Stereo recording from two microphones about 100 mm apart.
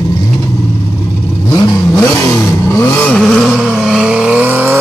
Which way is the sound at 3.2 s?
5° left (ahead or behind).